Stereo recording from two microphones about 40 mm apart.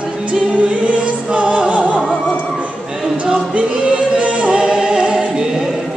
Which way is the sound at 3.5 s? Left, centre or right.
Right.